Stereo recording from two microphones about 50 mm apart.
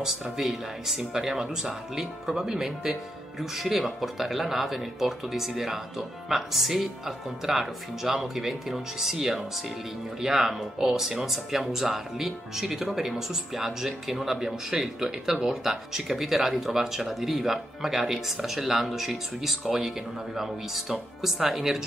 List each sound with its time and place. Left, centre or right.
0.4 s speech: centre